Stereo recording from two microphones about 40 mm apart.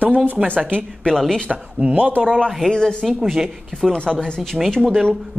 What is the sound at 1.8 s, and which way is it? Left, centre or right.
Speech, right.